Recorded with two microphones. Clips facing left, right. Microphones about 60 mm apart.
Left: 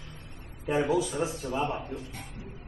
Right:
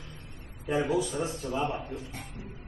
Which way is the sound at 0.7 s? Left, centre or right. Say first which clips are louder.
Left 2 dB; left.